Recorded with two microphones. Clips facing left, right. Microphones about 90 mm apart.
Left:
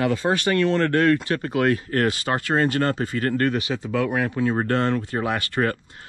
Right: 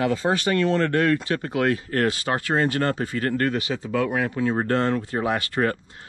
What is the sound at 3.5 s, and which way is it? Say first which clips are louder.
Speech: left 1 dB; 20° left (ahead or behind).